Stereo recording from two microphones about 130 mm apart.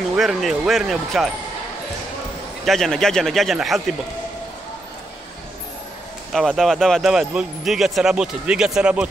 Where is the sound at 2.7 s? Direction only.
5° left (ahead or behind).